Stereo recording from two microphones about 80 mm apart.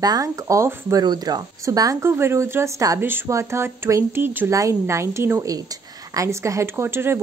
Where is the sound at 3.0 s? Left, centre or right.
Right.